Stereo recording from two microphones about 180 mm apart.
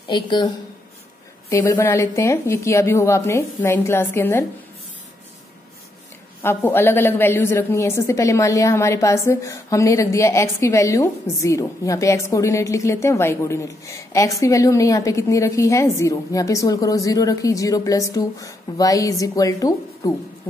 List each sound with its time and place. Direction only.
0.1 s speech: 25° left (ahead or behind)
1.5 s a woman's voice: 15° left (ahead or behind)
6.4 s a woman's voice: 15° left (ahead or behind)